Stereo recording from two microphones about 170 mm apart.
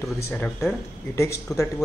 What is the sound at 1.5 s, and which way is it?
Speech, 20° left (ahead or behind).